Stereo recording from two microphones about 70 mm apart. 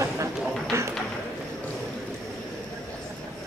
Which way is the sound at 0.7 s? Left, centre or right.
Right.